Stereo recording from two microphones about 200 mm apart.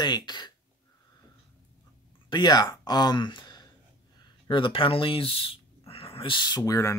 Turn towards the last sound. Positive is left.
turn(degrees=15)  # may be behind; listen again after turning